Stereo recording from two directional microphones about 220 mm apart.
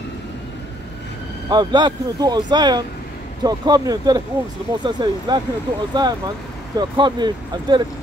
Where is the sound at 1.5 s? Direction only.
20° right (ahead or behind).